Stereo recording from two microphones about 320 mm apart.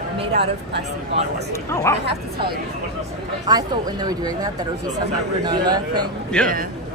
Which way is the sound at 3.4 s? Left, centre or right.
Centre.